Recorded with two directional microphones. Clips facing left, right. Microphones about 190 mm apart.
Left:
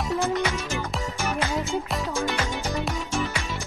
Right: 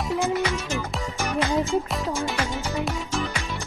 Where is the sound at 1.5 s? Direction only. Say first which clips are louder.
Right 4 dB; 35° right (ahead or behind).